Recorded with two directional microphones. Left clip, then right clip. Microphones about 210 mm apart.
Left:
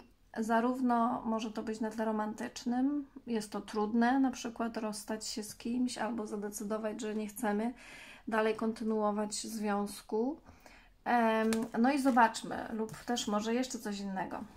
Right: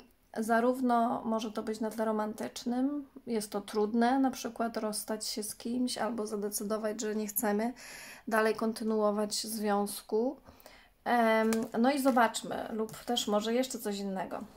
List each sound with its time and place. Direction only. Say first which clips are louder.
0.4 s speech: right 3 dB; 35° right (ahead or behind)